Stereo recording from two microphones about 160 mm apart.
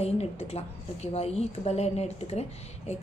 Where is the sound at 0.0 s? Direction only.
40° left (ahead or behind).